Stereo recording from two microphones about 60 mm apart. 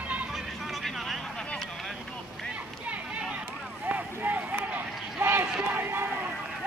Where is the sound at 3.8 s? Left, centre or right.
Right.